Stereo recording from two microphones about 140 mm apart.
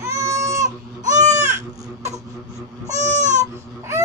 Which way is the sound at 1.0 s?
60° right (ahead or behind).